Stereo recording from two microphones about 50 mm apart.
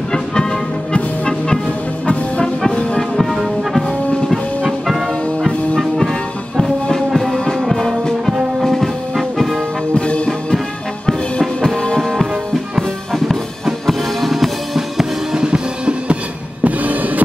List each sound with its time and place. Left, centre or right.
0.1 s music: centre
2.7 s brass instrument: left
3.0 s music: centre
6.5 s music: centre
9.9 s music: left
11.1 s music: centre
15.0 s drum: centre
16.6 s music: right